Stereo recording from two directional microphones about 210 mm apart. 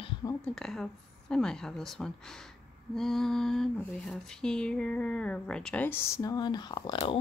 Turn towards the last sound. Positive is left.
turn(degrees=20)  # may be behind; listen again after turning